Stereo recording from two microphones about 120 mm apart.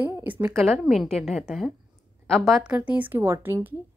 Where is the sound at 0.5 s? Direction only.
Centre (ahead or behind).